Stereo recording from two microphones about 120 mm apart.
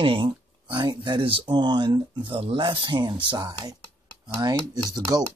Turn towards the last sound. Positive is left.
turn(degrees=-35)  # may be behind; listen again after turning